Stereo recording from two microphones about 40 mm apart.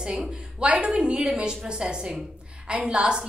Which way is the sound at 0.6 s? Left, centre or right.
Right.